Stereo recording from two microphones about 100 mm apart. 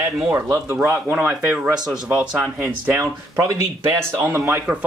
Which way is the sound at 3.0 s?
30° right (ahead or behind).